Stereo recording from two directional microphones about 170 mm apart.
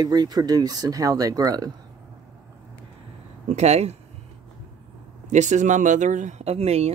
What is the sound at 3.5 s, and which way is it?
Speech, 40° right (ahead or behind).